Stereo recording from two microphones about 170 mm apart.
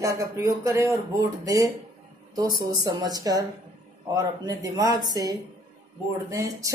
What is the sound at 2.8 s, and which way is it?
Speech, 20° right (ahead or behind).